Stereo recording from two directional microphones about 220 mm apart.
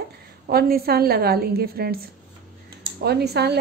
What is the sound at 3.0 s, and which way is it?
Speech, 45° right (ahead or behind).